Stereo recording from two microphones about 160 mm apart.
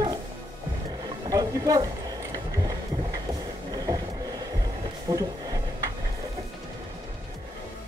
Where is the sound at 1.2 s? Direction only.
25° right (ahead or behind).